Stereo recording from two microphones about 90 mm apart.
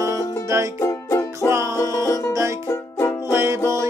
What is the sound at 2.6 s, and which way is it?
Music, 30° left (ahead or behind).